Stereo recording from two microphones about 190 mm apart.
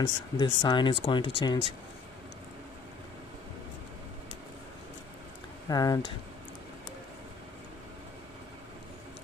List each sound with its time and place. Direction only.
0.0 s speech: 20° left (ahead or behind)
5.7 s speech: 20° left (ahead or behind)